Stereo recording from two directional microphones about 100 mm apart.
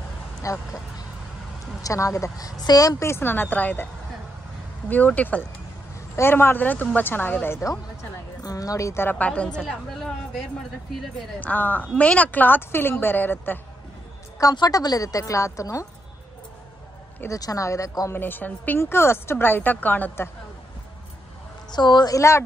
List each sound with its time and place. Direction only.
0.4 s a woman's voice: 35° left (ahead or behind)
9.1 s a woman's voice: 15° left (ahead or behind)
11.3 s a woman's voice: 15° left (ahead or behind)
14.4 s a woman's voice: 40° left (ahead or behind)
17.4 s a woman's voice: 35° left (ahead or behind)
18.1 s speech: 20° left (ahead or behind)
21.7 s a woman's voice: 45° left (ahead or behind)
22.1 s speech: 30° left (ahead or behind)